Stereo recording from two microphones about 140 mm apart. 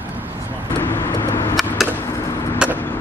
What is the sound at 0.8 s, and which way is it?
Vehicle, 20° left (ahead or behind).